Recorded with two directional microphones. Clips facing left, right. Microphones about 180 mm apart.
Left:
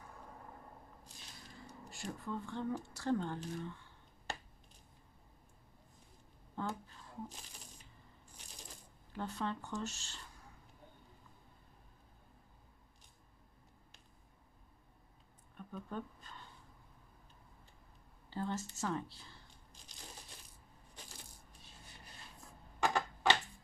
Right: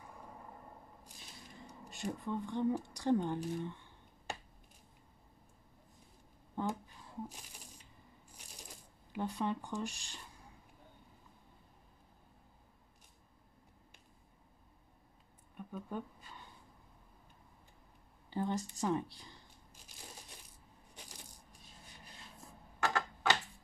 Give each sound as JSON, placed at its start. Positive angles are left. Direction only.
{"t": 1.6, "sound": "speech", "side_deg": -20}
{"t": 6.5, "sound": "shuffling cards", "side_deg": -15}
{"t": 9.1, "sound": "speech", "side_deg": -15}
{"t": 15.5, "sound": "a sound", "side_deg": -10}
{"t": 18.3, "sound": "a sound", "side_deg": -15}
{"t": 21.0, "sound": "coin", "side_deg": -15}
{"t": 22.8, "sound": "typewriter", "side_deg": 15}